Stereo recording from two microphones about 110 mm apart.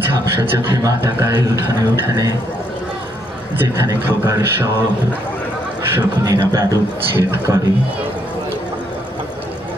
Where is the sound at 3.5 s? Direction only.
20° right (ahead or behind).